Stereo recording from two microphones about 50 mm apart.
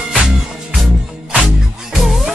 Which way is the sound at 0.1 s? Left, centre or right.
Centre.